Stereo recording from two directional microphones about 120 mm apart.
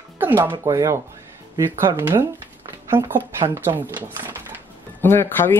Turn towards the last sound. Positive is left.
turn(degrees=20)  # may be behind; listen again after turning